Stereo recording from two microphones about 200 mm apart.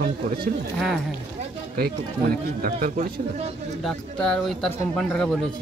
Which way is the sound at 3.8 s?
Centre (ahead or behind).